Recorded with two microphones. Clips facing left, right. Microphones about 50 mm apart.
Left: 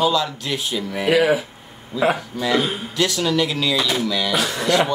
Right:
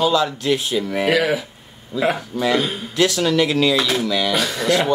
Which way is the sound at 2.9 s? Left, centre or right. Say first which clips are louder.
Right 3 dB; centre.